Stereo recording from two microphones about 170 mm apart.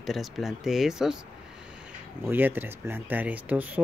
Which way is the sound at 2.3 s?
10° right (ahead or behind).